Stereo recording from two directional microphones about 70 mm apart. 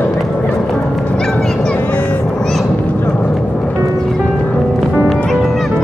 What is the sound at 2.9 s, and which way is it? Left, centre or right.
Music, left.